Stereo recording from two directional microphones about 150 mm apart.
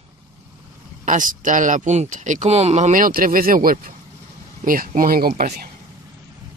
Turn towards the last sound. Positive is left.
turn(degrees=-75)  # may be behind; listen again after turning